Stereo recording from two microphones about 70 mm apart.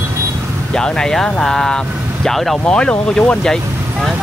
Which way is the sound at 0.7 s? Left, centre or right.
Centre.